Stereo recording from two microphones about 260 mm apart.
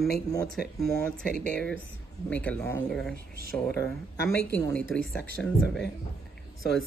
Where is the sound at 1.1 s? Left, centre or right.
Centre.